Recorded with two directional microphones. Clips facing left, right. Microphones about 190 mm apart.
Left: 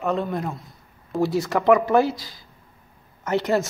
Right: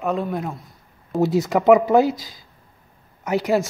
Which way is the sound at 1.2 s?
20° right (ahead or behind).